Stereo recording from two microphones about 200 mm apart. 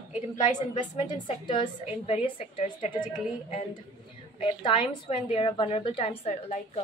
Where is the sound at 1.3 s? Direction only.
25° left (ahead or behind).